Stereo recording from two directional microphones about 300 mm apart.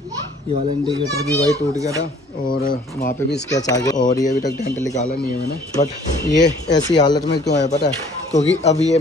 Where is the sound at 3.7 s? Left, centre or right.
Centre.